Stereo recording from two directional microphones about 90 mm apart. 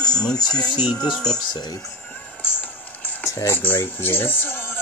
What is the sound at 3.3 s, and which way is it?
Speech, 35° left (ahead or behind).